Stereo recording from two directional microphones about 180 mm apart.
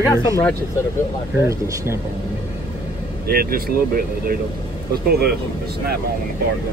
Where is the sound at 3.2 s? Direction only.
55° right (ahead or behind).